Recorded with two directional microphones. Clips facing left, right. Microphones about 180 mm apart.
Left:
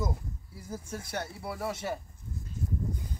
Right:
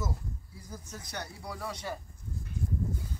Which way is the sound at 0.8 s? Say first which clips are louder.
Left 5 dB; 50° left (ahead or behind).